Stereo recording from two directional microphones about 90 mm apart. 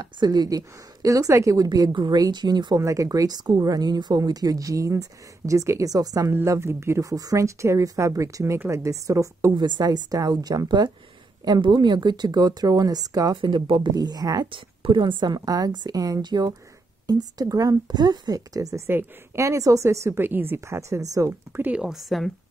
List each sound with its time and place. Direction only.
0.0 s speech: 50° right (ahead or behind)
2.8 s speech: 35° right (ahead or behind)
9.6 s speech: 55° right (ahead or behind)
13.4 s speech: 65° right (ahead or behind); by 14.5 s 45° right (ahead or behind)
14.5 s speech: 70° right (ahead or behind); by 21.3 s 35° right (ahead or behind)
21.5 s speech: 20° right (ahead or behind)
21.8 s a woman's voice: centre (ahead or behind)